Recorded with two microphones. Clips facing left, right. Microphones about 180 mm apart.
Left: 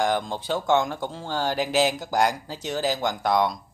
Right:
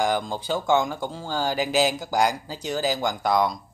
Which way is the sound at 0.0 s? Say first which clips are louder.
Even; centre (ahead or behind).